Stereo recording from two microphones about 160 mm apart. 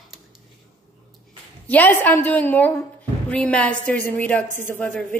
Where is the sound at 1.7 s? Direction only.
10° left (ahead or behind).